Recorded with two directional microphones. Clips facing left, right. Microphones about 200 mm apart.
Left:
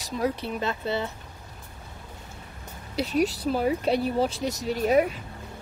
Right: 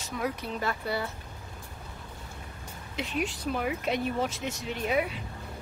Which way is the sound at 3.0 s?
40° left (ahead or behind).